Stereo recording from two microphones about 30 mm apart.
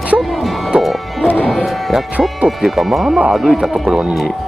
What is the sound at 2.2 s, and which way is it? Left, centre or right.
Speech, right.